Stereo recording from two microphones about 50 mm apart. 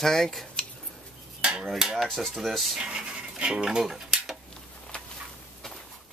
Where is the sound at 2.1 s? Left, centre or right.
Centre.